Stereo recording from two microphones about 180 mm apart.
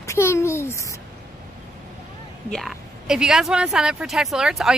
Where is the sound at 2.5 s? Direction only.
Centre (ahead or behind).